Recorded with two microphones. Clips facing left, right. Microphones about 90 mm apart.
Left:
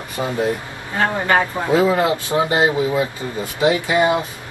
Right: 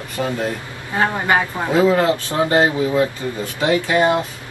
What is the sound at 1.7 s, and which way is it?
Speech, 15° left (ahead or behind).